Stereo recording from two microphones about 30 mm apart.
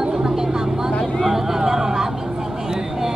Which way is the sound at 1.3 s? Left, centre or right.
Centre.